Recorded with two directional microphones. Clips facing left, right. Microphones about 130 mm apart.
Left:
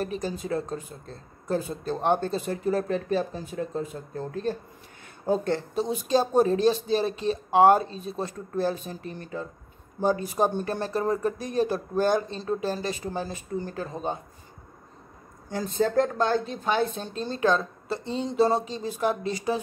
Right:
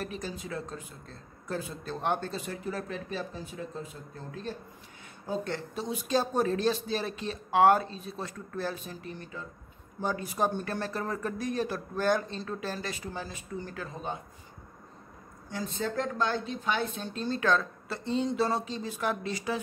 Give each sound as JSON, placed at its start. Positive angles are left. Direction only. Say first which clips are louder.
{"t": 0.0, "sound": "a woman's voice", "louder": "left 7 dB", "side_deg": 30}
{"t": 10.0, "sound": "speech", "louder": "left 6 dB", "side_deg": 30}
{"t": 15.5, "sound": "a woman's voice", "louder": "left 9 dB", "side_deg": 40}